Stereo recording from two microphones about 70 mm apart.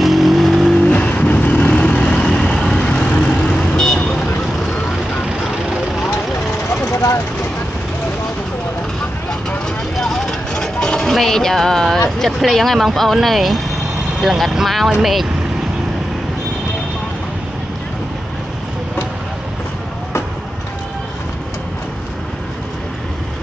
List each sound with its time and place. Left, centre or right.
0.0 s vehicle: centre
0.7 s vehicle: centre
6.9 s vehicle: left
9.9 s music: centre
12.2 s speech: centre